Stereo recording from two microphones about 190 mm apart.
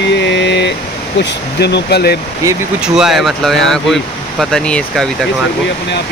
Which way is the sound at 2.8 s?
Centre (ahead or behind).